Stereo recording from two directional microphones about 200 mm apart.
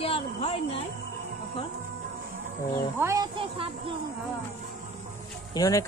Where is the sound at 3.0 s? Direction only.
15° right (ahead or behind).